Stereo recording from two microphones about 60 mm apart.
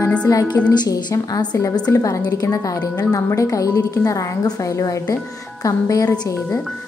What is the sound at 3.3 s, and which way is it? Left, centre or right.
A woman's voice, left.